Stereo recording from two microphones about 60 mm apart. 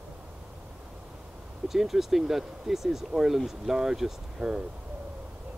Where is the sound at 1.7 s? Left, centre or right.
Centre.